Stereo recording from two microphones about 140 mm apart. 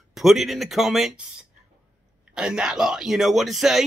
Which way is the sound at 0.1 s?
Centre (ahead or behind).